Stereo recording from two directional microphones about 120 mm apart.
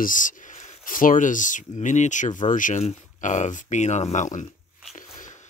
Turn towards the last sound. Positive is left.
turn(degrees=90)